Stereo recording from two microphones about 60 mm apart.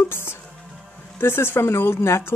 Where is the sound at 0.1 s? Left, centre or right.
Left.